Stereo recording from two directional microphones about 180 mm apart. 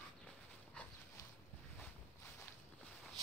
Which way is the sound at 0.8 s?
5° left (ahead or behind).